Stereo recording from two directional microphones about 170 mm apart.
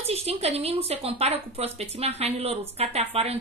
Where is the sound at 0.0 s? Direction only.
35° right (ahead or behind).